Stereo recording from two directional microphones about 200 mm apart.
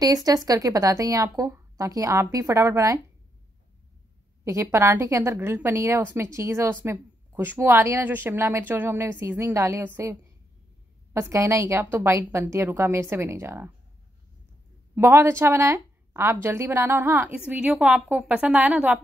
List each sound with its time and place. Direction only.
0.0 s a woman's voice: 20° right (ahead or behind)
4.5 s a woman's voice: 15° right (ahead or behind)
11.1 s a woman's voice: 15° right (ahead or behind)
15.0 s a woman's voice: 10° right (ahead or behind)